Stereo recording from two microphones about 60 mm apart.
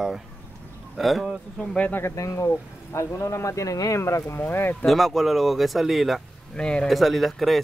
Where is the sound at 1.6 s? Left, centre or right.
Centre.